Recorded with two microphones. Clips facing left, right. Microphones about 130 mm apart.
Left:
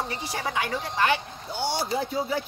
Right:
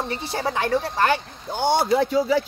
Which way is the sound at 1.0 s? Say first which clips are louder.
Right 3 dB; 45° right (ahead or behind).